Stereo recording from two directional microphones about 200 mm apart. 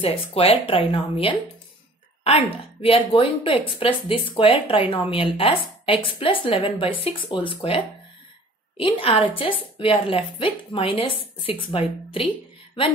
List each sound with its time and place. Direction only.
0.0 s a woman's voice: 30° left (ahead or behind)